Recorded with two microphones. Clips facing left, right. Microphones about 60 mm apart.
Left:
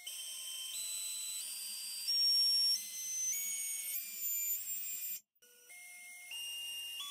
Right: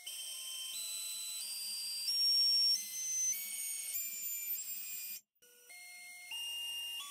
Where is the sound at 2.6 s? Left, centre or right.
Centre.